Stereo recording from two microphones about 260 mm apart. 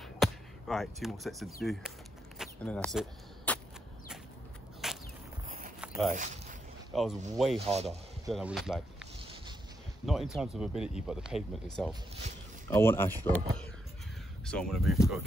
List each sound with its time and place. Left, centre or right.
0.0 s speech: centre
2.3 s a sound: centre
4.8 s walk: centre
5.8 s a sound: centre
6.1 s speech: right
6.9 s speech: centre
14.4 s speech: centre